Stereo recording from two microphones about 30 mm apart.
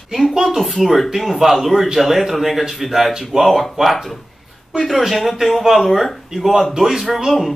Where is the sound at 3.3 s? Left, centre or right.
Centre.